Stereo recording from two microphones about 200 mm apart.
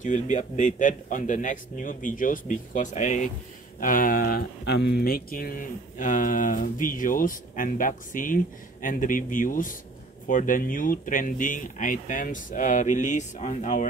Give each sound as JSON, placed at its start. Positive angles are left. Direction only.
{"t": 0.0, "sound": "speech", "side_deg": 40}